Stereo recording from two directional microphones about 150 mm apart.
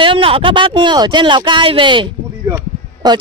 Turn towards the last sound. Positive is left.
turn(degrees=-30)  # may be behind; listen again after turning